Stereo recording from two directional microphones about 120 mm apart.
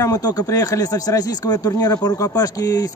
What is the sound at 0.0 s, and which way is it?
Speech, 30° left (ahead or behind).